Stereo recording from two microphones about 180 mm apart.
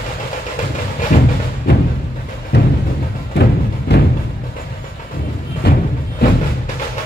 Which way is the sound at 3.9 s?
65° left (ahead or behind).